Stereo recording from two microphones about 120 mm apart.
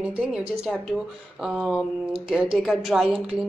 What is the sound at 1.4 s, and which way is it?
A woman's voice, centre (ahead or behind).